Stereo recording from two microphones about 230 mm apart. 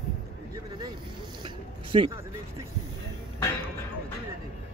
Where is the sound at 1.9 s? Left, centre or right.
Right.